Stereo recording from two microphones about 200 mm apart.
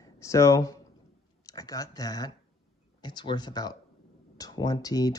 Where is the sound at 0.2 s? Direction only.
15° left (ahead or behind).